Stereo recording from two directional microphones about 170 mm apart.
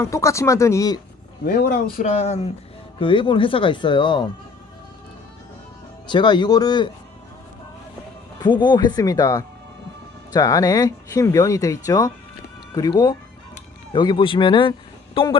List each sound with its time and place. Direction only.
0.0 s speech: 15° left (ahead or behind)
1.4 s speech: 65° left (ahead or behind)
2.0 s speech: 40° left (ahead or behind)
6.0 s speech: 25° left (ahead or behind)
8.4 s a man's voice: 25° left (ahead or behind)